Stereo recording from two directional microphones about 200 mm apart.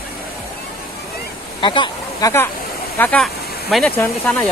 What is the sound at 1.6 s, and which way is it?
Speech, 25° left (ahead or behind).